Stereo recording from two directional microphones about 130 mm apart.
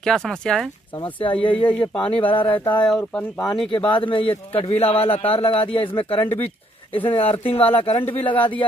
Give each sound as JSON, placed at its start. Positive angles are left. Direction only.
{"t": 0.0, "sound": "speech", "side_deg": 5}
{"t": 1.2, "sound": "a sound", "side_deg": 40}
{"t": 1.5, "sound": "speech", "side_deg": 10}
{"t": 2.1, "sound": "a sound", "side_deg": 40}
{"t": 2.7, "sound": "speech", "side_deg": 10}
{"t": 3.0, "sound": "speech", "side_deg": 20}
{"t": 3.7, "sound": "a man's voice", "side_deg": 40}